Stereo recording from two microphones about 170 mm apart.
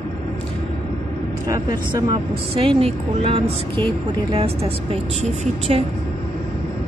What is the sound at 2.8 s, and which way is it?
Speech, 35° right (ahead or behind).